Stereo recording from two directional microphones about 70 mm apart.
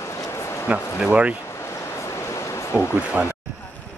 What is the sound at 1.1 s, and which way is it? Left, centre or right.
Speech, centre.